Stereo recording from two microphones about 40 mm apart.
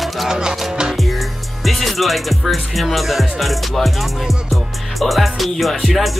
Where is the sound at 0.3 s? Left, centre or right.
Centre.